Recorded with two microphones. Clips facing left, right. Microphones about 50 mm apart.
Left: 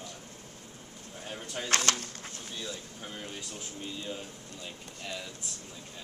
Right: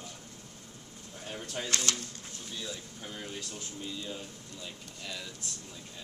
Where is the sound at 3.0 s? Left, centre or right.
Centre.